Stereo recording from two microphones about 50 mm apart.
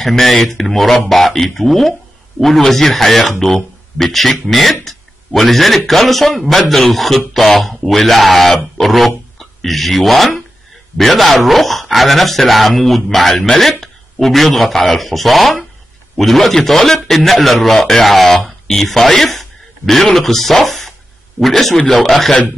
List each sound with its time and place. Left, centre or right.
0.0 s speech: centre
4.8 s a sound: centre
5.9 s speech: centre